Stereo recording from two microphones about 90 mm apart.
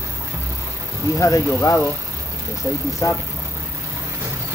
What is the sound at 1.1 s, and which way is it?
Speech, 35° left (ahead or behind).